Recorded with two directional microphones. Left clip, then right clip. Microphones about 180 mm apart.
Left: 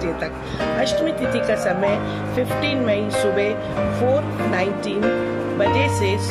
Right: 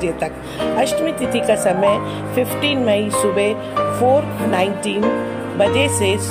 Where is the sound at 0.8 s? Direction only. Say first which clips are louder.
Right 2 dB; 15° right (ahead or behind).